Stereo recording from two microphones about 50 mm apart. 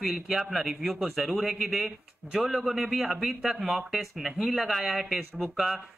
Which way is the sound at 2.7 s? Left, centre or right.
Centre.